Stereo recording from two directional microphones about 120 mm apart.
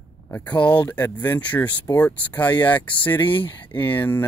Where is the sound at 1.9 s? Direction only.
30° left (ahead or behind).